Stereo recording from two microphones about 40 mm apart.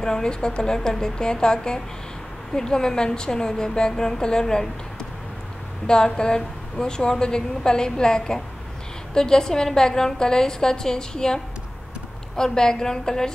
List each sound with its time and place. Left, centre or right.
0.0 s a woman's voice: centre
5.9 s a woman's voice: centre